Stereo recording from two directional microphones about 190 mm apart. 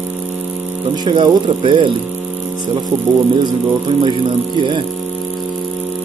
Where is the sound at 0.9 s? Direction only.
25° right (ahead or behind).